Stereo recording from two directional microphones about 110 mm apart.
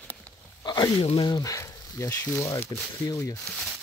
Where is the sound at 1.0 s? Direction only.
55° left (ahead or behind).